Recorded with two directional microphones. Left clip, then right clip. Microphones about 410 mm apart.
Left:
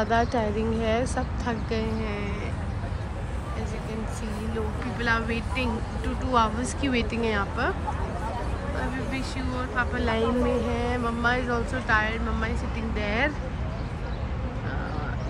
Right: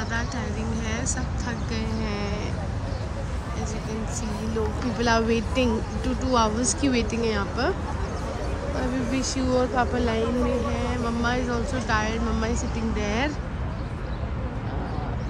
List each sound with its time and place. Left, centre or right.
0.0 s speech: centre
5.0 s speech: centre
9.1 s speech: centre